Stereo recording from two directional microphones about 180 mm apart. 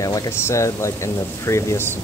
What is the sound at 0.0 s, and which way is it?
Speech, 20° left (ahead or behind).